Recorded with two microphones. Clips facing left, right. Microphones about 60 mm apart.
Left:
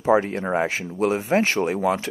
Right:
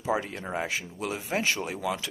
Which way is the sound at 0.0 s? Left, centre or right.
Left.